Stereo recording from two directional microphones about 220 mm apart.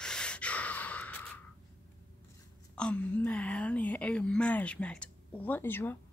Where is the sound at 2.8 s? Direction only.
5° left (ahead or behind).